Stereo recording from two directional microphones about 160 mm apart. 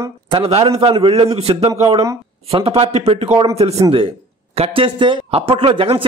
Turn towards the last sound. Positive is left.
turn(degrees=-35)  # may be behind; listen again after turning